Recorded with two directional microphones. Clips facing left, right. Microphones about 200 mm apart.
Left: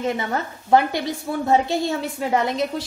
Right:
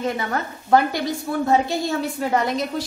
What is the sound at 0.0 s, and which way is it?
A woman's voice, 20° left (ahead or behind).